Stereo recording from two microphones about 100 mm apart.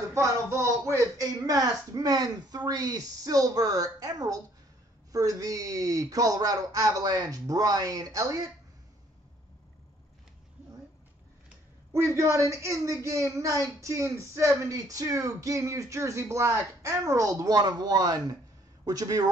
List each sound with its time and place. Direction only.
0.1 s a woman's voice: 30° right (ahead or behind)
11.9 s a woman's voice: 30° right (ahead or behind)